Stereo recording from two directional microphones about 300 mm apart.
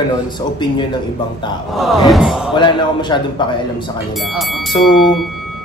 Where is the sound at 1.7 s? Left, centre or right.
Centre.